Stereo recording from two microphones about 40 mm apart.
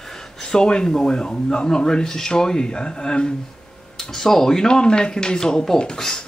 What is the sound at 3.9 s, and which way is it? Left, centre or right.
Speech, centre.